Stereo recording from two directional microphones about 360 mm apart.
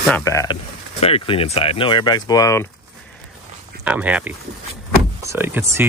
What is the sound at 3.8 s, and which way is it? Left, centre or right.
Speech, centre.